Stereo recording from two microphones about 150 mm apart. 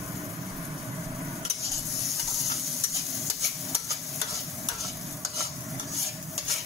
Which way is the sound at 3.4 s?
Centre (ahead or behind).